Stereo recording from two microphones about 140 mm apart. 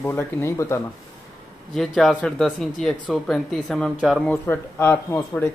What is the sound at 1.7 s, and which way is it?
Speech, centre (ahead or behind).